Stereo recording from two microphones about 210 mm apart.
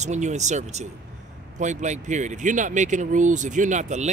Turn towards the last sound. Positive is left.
turn(degrees=-35)  # may be behind; listen again after turning